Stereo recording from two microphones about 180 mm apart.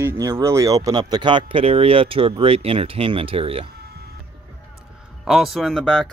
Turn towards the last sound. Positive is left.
turn(degrees=5)  # may be behind; listen again after turning